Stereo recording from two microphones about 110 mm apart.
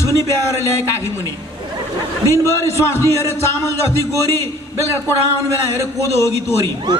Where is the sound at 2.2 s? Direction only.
25° left (ahead or behind).